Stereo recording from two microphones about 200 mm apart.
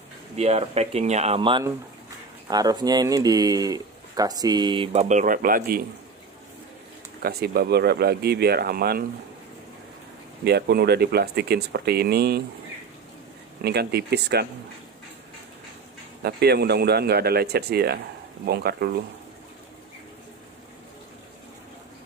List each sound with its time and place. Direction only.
0.4 s speech: 30° right (ahead or behind)
7.2 s speech: 50° right (ahead or behind)
10.4 s speech: 55° right (ahead or behind)
13.6 s speech: 55° right (ahead or behind)
16.2 s speech: 50° right (ahead or behind)